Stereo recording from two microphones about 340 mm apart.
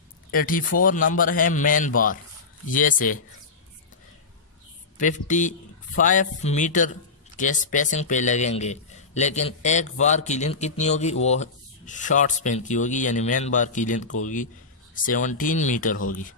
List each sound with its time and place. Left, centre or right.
0.3 s a man's voice: left
4.9 s a man's voice: left